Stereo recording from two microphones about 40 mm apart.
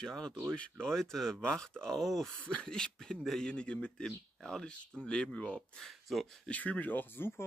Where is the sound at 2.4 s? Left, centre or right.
Left.